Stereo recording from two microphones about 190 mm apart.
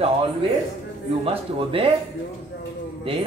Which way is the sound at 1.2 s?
30° right (ahead or behind).